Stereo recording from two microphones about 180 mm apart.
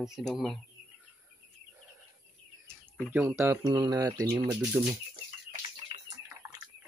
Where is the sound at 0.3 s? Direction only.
Centre (ahead or behind).